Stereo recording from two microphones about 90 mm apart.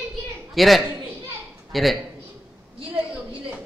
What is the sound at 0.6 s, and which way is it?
A man's voice, centre (ahead or behind).